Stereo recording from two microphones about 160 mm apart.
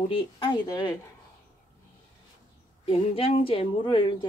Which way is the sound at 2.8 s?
35° left (ahead or behind).